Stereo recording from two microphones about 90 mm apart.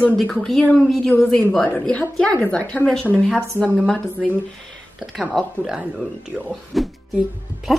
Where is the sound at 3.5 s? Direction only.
15° right (ahead or behind).